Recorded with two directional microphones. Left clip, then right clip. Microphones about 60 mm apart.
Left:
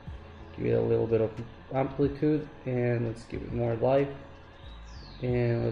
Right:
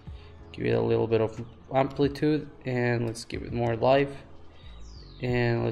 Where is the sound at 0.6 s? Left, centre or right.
Right.